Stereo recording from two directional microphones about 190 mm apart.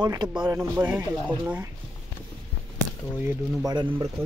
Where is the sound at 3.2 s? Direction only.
20° right (ahead or behind).